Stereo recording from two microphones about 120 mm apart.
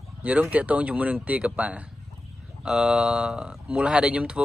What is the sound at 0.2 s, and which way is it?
Speech, 10° right (ahead or behind).